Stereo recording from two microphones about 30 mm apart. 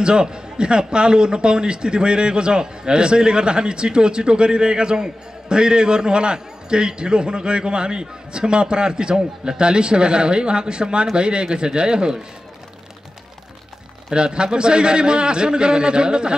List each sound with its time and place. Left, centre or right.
0.0 s a man's voice: right
14.1 s a man's voice: right